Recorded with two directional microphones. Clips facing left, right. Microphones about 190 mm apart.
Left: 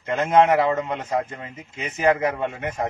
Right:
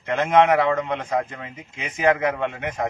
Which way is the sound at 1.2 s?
30° left (ahead or behind).